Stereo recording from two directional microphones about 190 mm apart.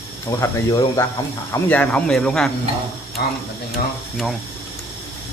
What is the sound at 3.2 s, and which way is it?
Speech, 55° left (ahead or behind).